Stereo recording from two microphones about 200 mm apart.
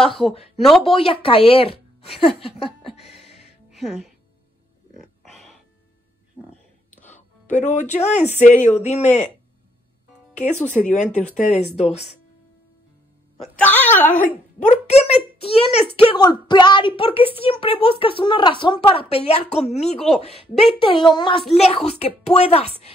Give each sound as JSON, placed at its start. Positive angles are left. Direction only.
{"t": 0.0, "sound": "speech", "side_deg": 0}
{"t": 0.9, "sound": "a woman's voice", "side_deg": 25}
{"t": 3.7, "sound": "speech", "side_deg": 0}
{"t": 6.9, "sound": "music", "side_deg": 10}
{"t": 7.5, "sound": "speech", "side_deg": 35}
{"t": 10.3, "sound": "speech", "side_deg": 35}
{"t": 13.4, "sound": "a woman's voice", "side_deg": 10}
{"t": 14.6, "sound": "speech", "side_deg": 35}